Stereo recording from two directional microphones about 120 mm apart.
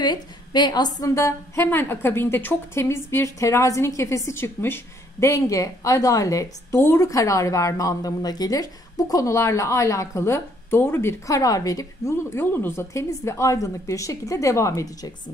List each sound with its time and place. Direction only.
0.0 s a woman's voice: 35° left (ahead or behind)